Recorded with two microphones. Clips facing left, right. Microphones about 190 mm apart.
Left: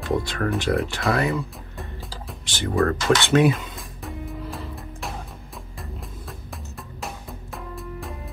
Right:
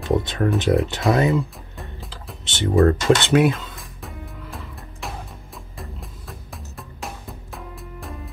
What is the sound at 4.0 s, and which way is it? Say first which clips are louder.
Music: left 6 dB; centre (ahead or behind).